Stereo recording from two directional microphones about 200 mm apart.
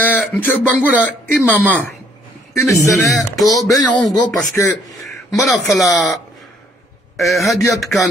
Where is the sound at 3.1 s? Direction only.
Centre (ahead or behind).